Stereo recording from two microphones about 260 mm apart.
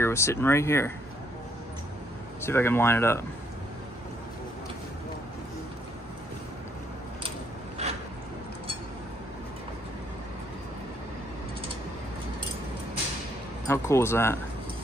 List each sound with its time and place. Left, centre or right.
0.0 s speech: centre
2.4 s speech: centre
7.8 s a sound: right
13.7 s speech: centre